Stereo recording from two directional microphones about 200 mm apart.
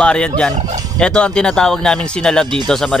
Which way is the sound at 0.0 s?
5° left (ahead or behind).